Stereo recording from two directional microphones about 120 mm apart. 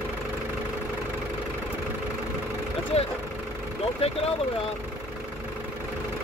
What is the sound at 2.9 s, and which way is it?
Speech, 60° left (ahead or behind).